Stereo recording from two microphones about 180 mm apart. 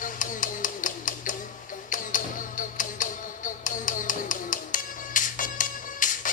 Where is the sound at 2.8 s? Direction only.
45° left (ahead or behind).